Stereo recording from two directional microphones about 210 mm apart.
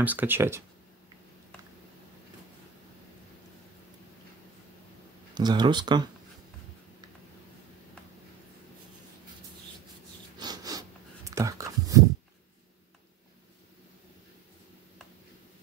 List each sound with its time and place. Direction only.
0.0 s speech: 10° right (ahead or behind)
5.3 s speech: 20° right (ahead or behind)
10.4 s a sound: 20° right (ahead or behind)